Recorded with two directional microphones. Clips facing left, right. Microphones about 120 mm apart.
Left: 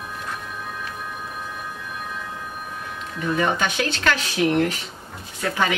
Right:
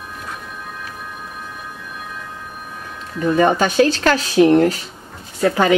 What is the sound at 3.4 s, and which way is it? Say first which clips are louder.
Speech: right 9 dB; 40° right (ahead or behind).